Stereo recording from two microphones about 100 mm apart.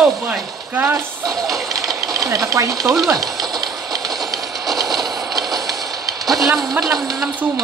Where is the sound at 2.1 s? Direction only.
35° right (ahead or behind).